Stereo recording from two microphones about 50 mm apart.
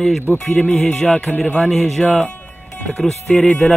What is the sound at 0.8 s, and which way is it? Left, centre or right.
Music, centre.